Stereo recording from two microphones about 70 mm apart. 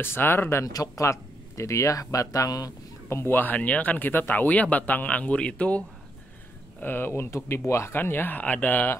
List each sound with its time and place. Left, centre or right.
0.0 s speech: left
0.7 s speech: left
3.1 s speech: left; by 5.9 s centre
6.8 s speech: left
7.9 s speech: left